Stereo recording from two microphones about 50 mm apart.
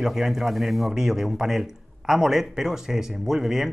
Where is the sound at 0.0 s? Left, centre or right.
Centre.